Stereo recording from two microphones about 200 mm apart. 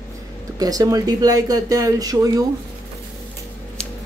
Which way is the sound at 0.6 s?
20° right (ahead or behind).